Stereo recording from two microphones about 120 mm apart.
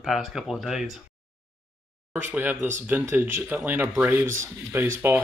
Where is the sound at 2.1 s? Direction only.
15° right (ahead or behind).